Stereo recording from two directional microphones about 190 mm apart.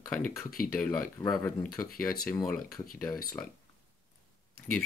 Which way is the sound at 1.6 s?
50° left (ahead or behind).